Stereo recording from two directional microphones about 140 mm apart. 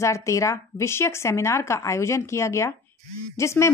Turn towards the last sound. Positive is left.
turn(degrees=20)  # may be behind; listen again after turning